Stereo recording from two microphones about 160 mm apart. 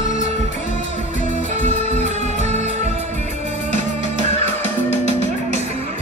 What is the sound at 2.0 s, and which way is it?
Music, 45° right (ahead or behind).